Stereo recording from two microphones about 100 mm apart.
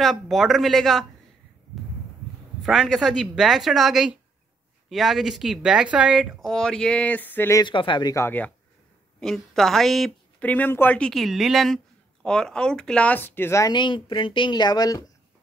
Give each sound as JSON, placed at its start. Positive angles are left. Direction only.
{"t": 0.0, "sound": "speech", "side_deg": 0}
{"t": 2.6, "sound": "speech", "side_deg": 0}
{"t": 7.6, "sound": "speech", "side_deg": 55}
{"t": 9.2, "sound": "speech", "side_deg": 5}
{"t": 10.4, "sound": "speech", "side_deg": 15}
{"t": 11.0, "sound": "speech", "side_deg": 5}
{"t": 13.7, "sound": "speech", "side_deg": 50}